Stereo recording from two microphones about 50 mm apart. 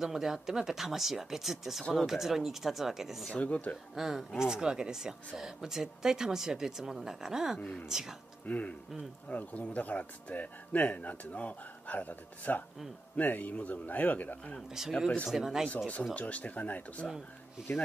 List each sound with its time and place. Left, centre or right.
0.0 s speech: centre
3.3 s speech: left
3.9 s speech: centre
8.5 s speech: left
14.7 s speech: centre
16.2 s speech: left